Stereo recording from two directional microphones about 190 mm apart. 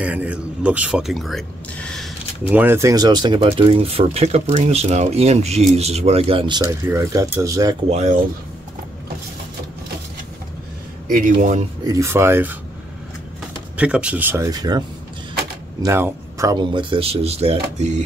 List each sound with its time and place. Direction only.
0.0 s speech: 10° right (ahead or behind)
2.5 s speech: 10° right (ahead or behind); by 6.6 s 25° right (ahead or behind)
6.7 s speech: 15° right (ahead or behind)
7.9 s speech: 40° right (ahead or behind)
11.1 s speech: 45° right (ahead or behind)
11.8 s speech: 15° right (ahead or behind)
13.7 s speech: 5° right (ahead or behind); by 17.9 s 30° right (ahead or behind)